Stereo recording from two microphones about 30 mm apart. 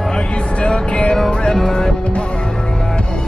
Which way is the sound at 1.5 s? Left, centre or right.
Centre.